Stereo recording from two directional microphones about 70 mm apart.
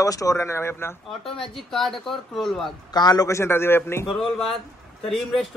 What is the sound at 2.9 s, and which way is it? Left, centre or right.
Speech, left.